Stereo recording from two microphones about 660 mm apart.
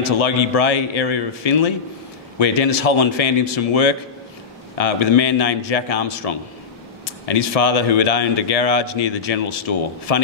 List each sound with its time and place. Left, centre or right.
0.0 s speech: left